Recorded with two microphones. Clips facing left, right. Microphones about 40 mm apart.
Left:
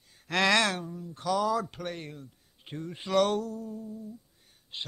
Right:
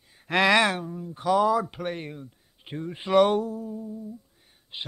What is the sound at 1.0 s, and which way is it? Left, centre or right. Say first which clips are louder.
Speech: right 7 dB; right.